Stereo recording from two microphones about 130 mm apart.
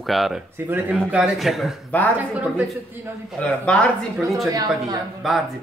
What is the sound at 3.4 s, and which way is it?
Speech, 10° left (ahead or behind).